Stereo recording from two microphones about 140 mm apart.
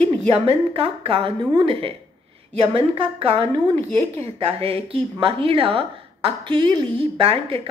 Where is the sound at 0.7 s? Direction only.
40° right (ahead or behind).